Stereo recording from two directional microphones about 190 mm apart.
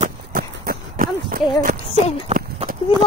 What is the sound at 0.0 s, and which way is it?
Clip-clop, 50° right (ahead or behind).